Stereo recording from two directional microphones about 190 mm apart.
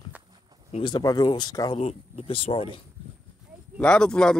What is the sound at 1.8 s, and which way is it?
Speech, 30° left (ahead or behind).